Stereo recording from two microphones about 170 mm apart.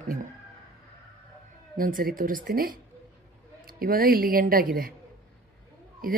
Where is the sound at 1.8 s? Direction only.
55° right (ahead or behind).